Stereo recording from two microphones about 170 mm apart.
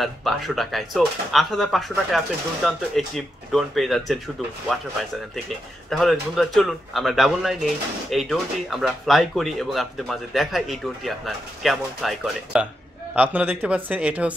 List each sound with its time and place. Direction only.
0.0 s speech: centre (ahead or behind)